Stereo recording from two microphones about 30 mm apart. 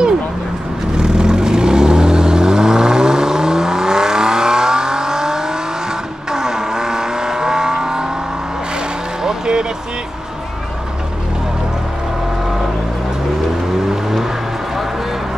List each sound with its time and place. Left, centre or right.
0.9 s vehicle: right
9.2 s vehicle: right